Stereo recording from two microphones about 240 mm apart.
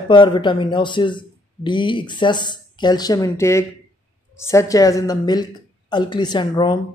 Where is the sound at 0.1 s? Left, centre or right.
Centre.